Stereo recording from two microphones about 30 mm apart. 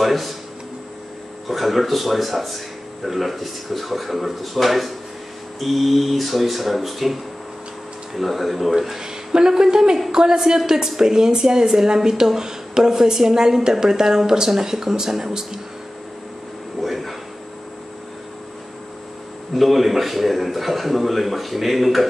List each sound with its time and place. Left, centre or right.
0.0 s speech: centre
1.5 s a man's voice: centre
8.2 s a man's voice: centre
8.7 s speech: centre
16.8 s a sound: centre
19.5 s a man's voice: centre